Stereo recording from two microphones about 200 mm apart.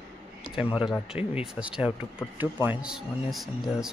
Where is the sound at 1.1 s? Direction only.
30° left (ahead or behind).